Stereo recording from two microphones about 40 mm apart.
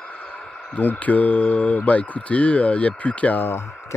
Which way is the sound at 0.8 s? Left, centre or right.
Left.